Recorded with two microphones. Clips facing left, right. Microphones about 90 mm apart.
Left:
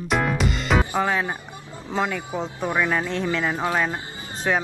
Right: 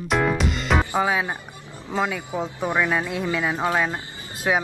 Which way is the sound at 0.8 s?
15° right (ahead or behind).